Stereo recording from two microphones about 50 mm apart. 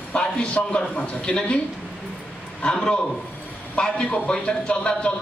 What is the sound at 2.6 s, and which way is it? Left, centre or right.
Speech, centre.